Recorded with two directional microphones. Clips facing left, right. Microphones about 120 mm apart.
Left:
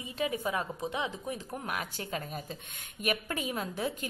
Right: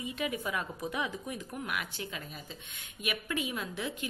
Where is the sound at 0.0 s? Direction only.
35° left (ahead or behind).